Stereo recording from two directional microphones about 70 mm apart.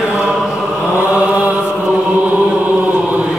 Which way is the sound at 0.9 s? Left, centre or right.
Right.